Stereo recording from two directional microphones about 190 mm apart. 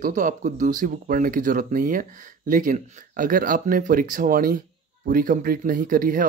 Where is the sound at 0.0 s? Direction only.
40° right (ahead or behind).